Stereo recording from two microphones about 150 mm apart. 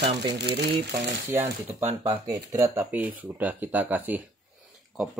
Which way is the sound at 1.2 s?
15° right (ahead or behind).